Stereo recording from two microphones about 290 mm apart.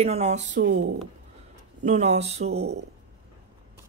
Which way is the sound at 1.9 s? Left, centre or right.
Right.